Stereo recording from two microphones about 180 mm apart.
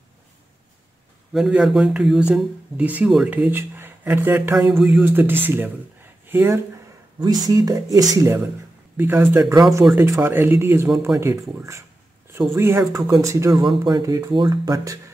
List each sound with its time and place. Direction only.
1.3 s speech: 5° right (ahead or behind); by 15.0 s 20° right (ahead or behind)